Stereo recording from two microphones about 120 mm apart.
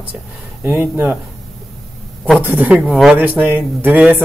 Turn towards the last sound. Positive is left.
turn(degrees=-15)  # may be behind; listen again after turning